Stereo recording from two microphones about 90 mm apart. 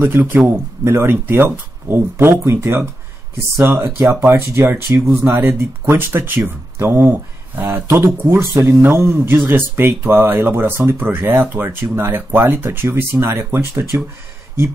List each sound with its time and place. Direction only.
0.0 s speech: 20° right (ahead or behind)